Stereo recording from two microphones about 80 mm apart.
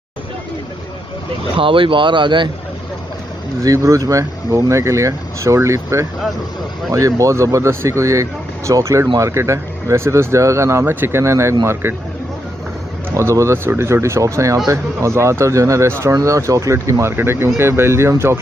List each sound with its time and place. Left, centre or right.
1.6 s speech: right
3.6 s speech: right
13.1 s speech: right
17.1 s speech: right